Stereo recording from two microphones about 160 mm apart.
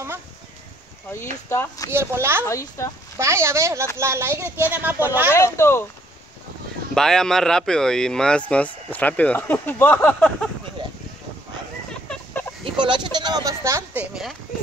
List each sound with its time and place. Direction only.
1.5 s speech: 15° left (ahead or behind)
1.9 s speech: 15° right (ahead or behind)
2.4 s speech: 20° left (ahead or behind)
3.2 s speech: 15° right (ahead or behind)
5.3 s speech: 15° left (ahead or behind)
7.0 s speech: 5° left (ahead or behind)
11.9 s a sound: 5° left (ahead or behind)
12.8 s speech: 30° right (ahead or behind)